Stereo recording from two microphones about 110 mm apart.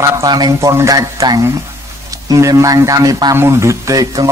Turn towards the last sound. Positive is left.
turn(degrees=-30)  # may be behind; listen again after turning